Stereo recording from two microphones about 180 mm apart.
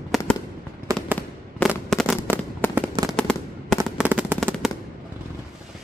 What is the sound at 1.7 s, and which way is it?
Fireworks, centre (ahead or behind).